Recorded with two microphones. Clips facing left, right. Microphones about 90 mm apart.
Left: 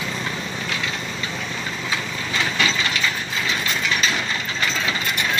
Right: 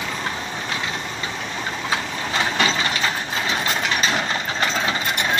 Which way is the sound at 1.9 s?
45° right (ahead or behind).